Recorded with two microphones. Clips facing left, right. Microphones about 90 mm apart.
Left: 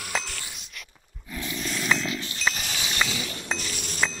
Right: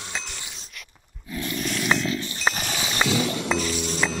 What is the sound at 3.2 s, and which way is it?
Music, 90° right.